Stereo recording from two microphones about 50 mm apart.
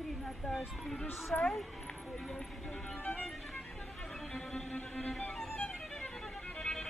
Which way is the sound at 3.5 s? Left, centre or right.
Centre.